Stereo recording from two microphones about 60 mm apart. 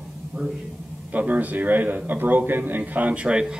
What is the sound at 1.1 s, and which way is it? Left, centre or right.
A man's voice, right.